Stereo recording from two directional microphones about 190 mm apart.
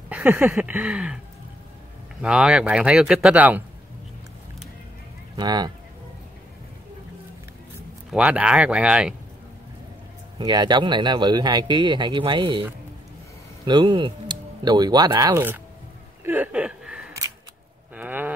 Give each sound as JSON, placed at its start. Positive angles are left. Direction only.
{"t": 0.1, "sound": "a sound", "side_deg": -10}
{"t": 2.2, "sound": "speech", "side_deg": -5}
{"t": 5.3, "sound": "speech", "side_deg": -20}
{"t": 8.1, "sound": "speech", "side_deg": -5}
{"t": 10.4, "sound": "speech", "side_deg": -20}
{"t": 13.7, "sound": "speech", "side_deg": -25}
{"t": 16.3, "sound": "a sound", "side_deg": -10}
{"t": 17.9, "sound": "livestock", "side_deg": -10}